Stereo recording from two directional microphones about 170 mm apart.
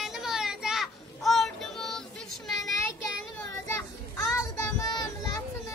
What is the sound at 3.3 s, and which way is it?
Child singing, 15° left (ahead or behind).